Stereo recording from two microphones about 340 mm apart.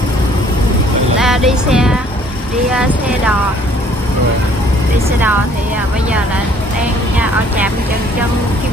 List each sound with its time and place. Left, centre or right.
1.2 s speech: centre